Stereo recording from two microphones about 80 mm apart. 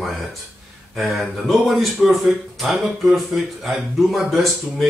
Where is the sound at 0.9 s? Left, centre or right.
Centre.